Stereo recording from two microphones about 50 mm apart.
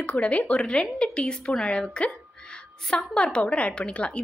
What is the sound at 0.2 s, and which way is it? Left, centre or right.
A woman's voice, left.